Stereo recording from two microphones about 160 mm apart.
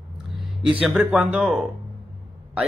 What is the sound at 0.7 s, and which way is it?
A man's voice, 5° right (ahead or behind).